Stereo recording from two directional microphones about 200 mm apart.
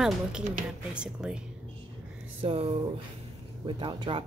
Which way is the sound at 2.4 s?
30° right (ahead or behind).